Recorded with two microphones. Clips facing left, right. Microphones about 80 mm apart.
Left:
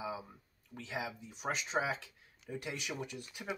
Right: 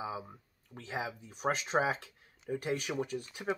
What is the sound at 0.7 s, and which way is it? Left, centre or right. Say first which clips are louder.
Speech: right 2 dB; right.